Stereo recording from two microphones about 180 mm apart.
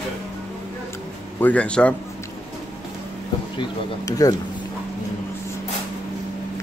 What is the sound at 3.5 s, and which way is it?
Speech, 20° left (ahead or behind).